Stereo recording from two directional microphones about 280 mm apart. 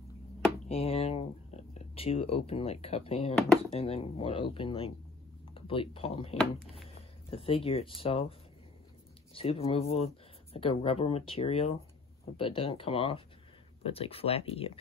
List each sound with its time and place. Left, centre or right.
0.7 s speech: left